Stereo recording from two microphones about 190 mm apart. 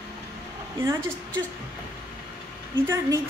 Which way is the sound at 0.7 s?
15° right (ahead or behind).